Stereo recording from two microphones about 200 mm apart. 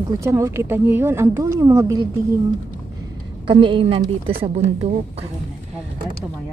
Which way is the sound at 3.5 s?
25° right (ahead or behind).